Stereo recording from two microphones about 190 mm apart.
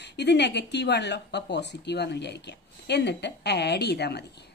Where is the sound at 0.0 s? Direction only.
60° left (ahead or behind).